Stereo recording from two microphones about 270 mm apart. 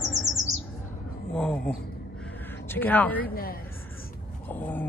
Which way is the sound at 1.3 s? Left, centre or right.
Centre.